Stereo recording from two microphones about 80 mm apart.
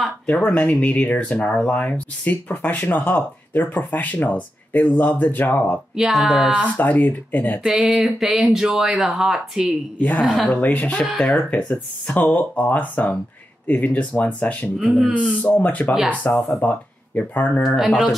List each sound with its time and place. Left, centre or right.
0.3 s speech: centre
5.9 s speech: centre
6.8 s speech: left
7.9 s speech: centre
9.9 s a woman's voice: centre
10.2 s speech: centre
10.5 s speech: centre
11.1 s speech: centre
11.3 s speech: centre
14.8 s speech: centre
15.4 s speech: centre
17.6 s speech: centre